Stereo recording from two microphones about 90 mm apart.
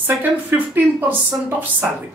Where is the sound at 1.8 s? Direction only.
20° right (ahead or behind).